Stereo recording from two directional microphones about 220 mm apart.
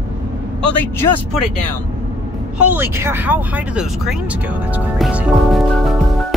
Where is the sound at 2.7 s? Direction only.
10° right (ahead or behind).